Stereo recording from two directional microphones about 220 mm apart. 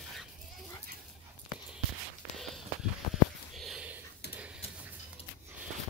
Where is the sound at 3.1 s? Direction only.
Centre (ahead or behind).